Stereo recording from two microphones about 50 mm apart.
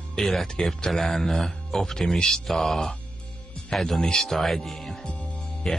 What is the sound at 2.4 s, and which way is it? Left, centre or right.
Speech, centre.